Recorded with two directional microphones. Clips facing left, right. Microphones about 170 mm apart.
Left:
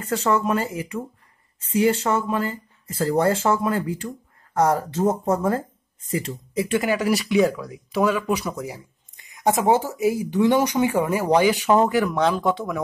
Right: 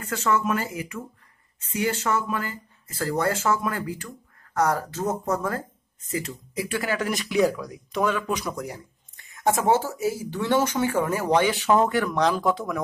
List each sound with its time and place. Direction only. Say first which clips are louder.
0.1 s speech: left 3 dB; 30° left (ahead or behind); by 7.2 s 10° left (ahead or behind)
7.2 s speech: right 1 dB; centre (ahead or behind)
9.3 s speech: left 2 dB; 15° left (ahead or behind); by 12.8 s centre (ahead or behind)